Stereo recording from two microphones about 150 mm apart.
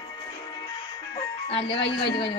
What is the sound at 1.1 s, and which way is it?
Music, 40° left (ahead or behind).